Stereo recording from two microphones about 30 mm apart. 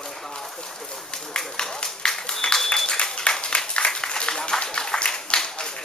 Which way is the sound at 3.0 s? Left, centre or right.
Left.